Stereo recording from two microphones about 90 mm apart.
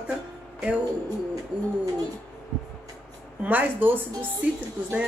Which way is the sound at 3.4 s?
15° right (ahead or behind).